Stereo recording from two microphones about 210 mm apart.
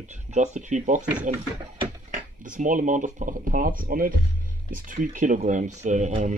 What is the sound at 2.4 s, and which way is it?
Speech, 40° right (ahead or behind).